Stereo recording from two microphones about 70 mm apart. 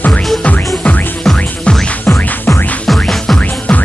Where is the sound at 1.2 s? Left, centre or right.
Centre.